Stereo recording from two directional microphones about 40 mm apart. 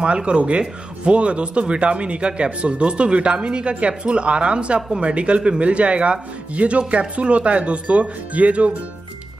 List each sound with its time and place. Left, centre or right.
0.0 s speech: right